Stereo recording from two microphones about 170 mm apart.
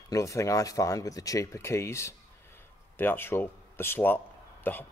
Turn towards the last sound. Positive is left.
turn(degrees=10)  # may be behind; listen again after turning